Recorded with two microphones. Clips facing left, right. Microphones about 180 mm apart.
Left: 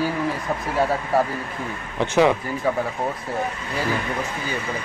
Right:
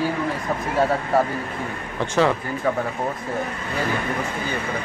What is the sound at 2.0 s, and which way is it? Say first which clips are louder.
Speech: left 2 dB; 15° left (ahead or behind).